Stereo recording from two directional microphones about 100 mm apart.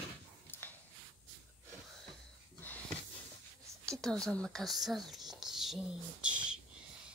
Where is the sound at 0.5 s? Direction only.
20° left (ahead or behind).